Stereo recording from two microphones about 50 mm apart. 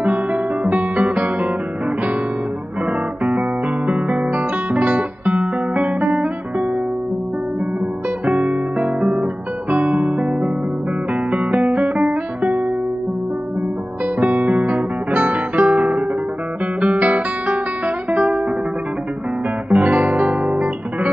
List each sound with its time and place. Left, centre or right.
0.0 s guitar: right
3.3 s music: right
8.3 s guitar: right
9.7 s music: right
14.2 s guitar: right
19.7 s music: right